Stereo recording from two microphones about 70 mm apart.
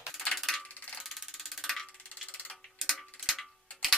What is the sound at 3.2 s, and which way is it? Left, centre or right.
Tick-tock, centre.